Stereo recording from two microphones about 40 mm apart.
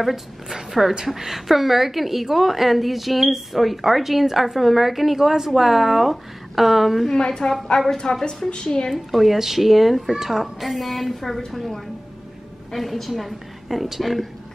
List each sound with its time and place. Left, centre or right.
0.0 s a woman's voice: centre
7.2 s a woman's voice: centre
8.9 s a woman's voice: centre